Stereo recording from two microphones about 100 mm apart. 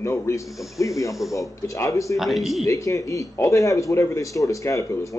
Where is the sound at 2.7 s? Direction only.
35° left (ahead or behind).